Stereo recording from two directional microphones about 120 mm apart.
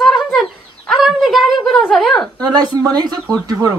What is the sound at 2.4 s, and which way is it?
Speech, 35° right (ahead or behind).